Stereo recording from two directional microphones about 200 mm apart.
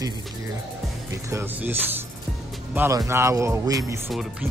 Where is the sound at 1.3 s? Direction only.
10° right (ahead or behind).